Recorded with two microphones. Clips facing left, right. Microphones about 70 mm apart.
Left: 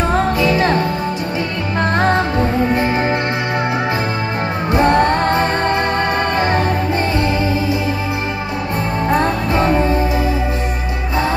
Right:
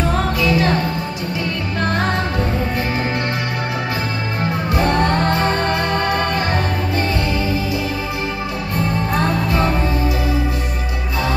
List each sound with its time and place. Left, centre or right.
0.4 s music: left
2.7 s music: left
4.6 s music: left
9.1 s music: left